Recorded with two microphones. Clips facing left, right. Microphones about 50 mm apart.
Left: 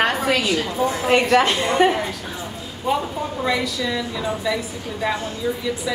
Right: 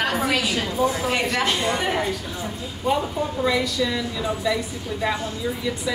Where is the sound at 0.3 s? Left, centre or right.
Centre.